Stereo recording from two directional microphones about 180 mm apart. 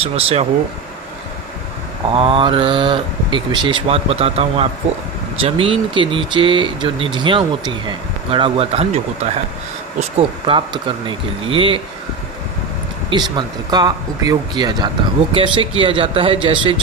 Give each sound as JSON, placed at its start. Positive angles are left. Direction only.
{"t": 0.0, "sound": "speech", "side_deg": -35}
{"t": 2.1, "sound": "speech", "side_deg": -30}
{"t": 13.1, "sound": "speech", "side_deg": -25}